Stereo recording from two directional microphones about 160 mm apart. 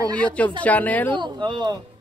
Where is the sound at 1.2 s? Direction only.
30° right (ahead or behind).